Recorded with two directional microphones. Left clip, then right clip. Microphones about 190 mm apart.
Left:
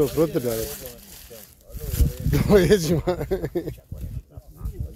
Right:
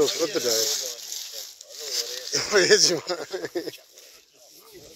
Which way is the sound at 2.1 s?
15° left (ahead or behind).